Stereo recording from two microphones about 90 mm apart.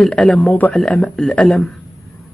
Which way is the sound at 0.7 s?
10° left (ahead or behind).